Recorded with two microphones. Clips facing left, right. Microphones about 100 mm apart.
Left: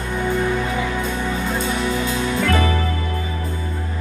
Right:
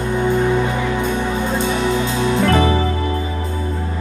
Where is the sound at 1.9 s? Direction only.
30° right (ahead or behind).